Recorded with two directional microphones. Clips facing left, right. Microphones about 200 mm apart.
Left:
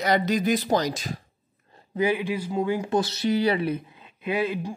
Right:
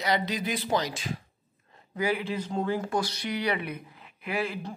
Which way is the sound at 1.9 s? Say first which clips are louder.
Left 4 dB; 20° left (ahead or behind).